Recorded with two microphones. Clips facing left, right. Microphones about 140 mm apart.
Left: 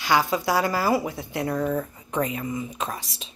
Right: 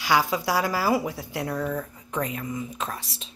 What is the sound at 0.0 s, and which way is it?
A woman's voice, 10° right (ahead or behind).